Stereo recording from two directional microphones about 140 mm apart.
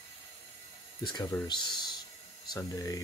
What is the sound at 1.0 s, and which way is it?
Speech, 30° left (ahead or behind).